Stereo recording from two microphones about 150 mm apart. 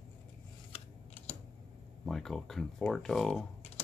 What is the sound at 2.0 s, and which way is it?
Speech, centre (ahead or behind).